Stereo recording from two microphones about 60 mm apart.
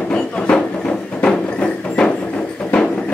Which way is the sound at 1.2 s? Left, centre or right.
Centre.